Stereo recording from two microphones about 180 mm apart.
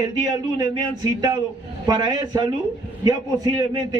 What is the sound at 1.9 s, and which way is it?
A man's voice, 25° right (ahead or behind).